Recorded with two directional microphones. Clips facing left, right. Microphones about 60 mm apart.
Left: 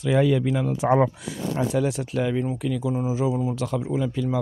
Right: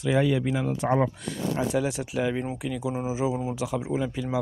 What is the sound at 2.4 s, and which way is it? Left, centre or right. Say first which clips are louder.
Speech: left 4 dB; centre.